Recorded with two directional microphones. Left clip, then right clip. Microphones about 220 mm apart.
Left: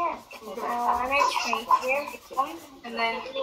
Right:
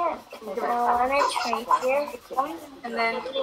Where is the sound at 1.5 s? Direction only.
45° right (ahead or behind).